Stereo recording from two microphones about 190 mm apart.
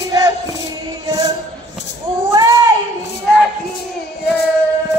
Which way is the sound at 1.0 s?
20° right (ahead or behind).